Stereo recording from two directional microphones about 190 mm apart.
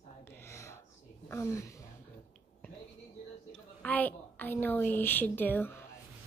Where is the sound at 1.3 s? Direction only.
15° left (ahead or behind).